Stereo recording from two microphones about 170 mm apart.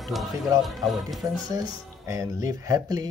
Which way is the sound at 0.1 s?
Centre (ahead or behind).